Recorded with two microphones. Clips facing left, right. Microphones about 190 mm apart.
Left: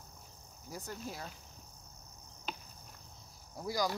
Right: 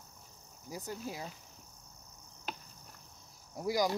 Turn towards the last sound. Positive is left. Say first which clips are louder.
# right 3 dB
turn(degrees=-20)  # may be behind; listen again after turning